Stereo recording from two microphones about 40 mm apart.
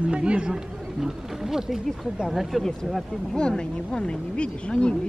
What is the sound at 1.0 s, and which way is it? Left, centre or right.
Speech, centre.